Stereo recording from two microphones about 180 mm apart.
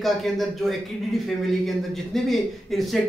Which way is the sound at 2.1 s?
Centre (ahead or behind).